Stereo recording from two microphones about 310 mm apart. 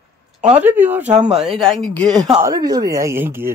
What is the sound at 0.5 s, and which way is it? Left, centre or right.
Speech, centre.